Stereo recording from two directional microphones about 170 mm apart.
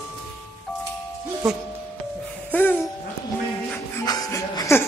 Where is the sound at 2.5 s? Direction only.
10° left (ahead or behind).